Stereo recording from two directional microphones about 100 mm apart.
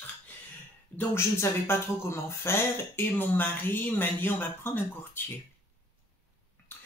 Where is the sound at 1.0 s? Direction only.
25° left (ahead or behind).